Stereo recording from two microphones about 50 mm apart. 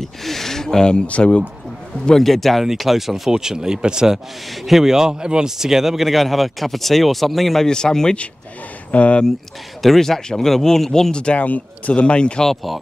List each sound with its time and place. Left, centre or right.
0.0 s speech: centre; by 1.4 s left
2.0 s speech: centre
7.6 s speech: centre
8.9 s speech: left
9.8 s speech: centre
11.4 s speech: left